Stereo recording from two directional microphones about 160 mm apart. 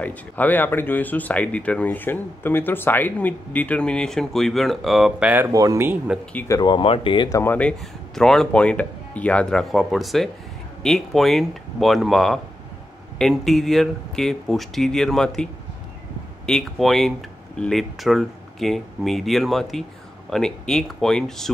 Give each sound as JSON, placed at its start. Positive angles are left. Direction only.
{"t": 0.0, "sound": "speech", "side_deg": 10}
{"t": 5.5, "sound": "speech", "side_deg": -20}
{"t": 6.3, "sound": "speech", "side_deg": 20}
{"t": 6.6, "sound": "speech", "side_deg": 30}
{"t": 7.5, "sound": "speech", "side_deg": 5}
{"t": 16.4, "sound": "speech", "side_deg": 0}